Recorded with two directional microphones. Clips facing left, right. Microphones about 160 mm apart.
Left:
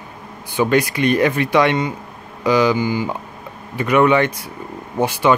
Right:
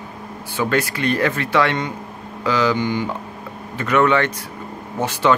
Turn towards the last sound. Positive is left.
turn(degrees=10)  # may be behind; listen again after turning